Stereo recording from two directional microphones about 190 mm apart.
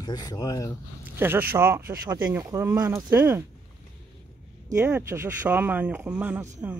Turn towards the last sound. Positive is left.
turn(degrees=-10)  # may be behind; listen again after turning